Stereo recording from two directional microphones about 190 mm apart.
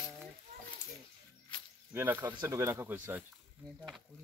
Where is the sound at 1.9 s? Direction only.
10° right (ahead or behind).